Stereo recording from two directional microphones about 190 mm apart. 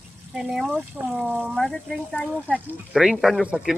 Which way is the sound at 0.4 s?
Centre (ahead or behind).